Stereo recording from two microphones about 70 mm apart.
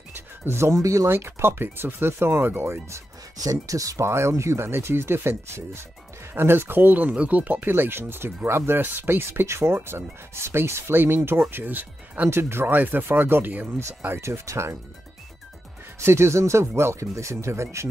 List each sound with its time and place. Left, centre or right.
0.5 s speech: right
1.1 s speech: right
3.3 s speech: right
12.3 s speech: right
13.7 s speech: right
16.0 s speech: right